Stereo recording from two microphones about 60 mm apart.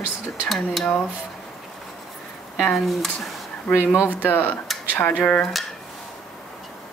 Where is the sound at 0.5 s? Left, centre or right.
Centre.